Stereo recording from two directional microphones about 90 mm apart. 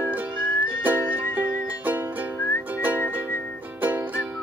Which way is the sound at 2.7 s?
20° right (ahead or behind).